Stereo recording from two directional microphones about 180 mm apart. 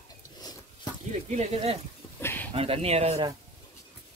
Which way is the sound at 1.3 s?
40° right (ahead or behind).